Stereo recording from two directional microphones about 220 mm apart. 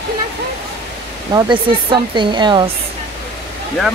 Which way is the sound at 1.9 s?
20° right (ahead or behind).